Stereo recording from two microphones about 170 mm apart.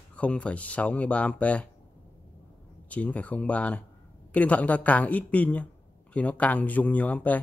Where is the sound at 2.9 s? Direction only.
10° left (ahead or behind).